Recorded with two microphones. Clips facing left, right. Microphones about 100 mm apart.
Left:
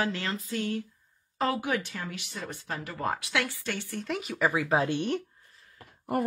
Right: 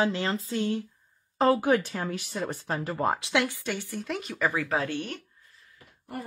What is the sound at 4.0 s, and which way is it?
Speech, centre (ahead or behind).